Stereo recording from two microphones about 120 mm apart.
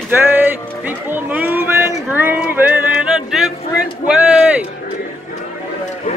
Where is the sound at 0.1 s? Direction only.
15° right (ahead or behind).